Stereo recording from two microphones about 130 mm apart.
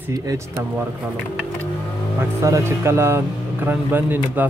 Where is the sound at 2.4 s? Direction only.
20° right (ahead or behind).